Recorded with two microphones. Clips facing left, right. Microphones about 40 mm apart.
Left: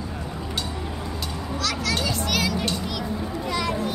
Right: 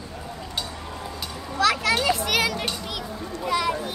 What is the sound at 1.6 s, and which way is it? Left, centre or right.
Children playing, right.